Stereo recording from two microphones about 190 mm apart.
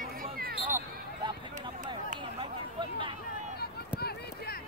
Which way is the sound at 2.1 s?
25° right (ahead or behind).